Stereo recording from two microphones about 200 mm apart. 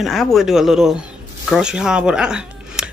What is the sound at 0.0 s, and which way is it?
Speech, centre (ahead or behind).